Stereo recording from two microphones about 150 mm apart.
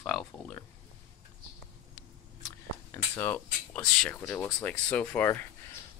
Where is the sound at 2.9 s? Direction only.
15° left (ahead or behind).